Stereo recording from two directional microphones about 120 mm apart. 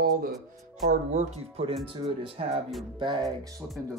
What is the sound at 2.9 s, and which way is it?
Speech, 40° right (ahead or behind).